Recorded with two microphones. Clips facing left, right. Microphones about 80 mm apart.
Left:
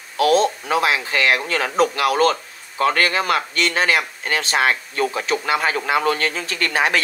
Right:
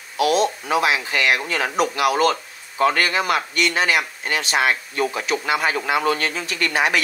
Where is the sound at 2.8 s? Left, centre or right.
Left.